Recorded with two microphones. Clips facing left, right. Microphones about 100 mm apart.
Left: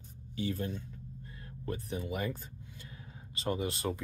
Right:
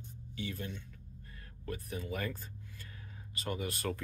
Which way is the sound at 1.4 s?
25° left (ahead or behind).